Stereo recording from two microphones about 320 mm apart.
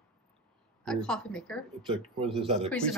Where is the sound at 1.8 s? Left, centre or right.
Centre.